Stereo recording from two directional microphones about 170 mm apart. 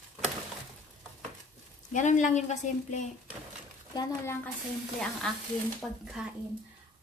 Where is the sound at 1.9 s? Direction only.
45° left (ahead or behind).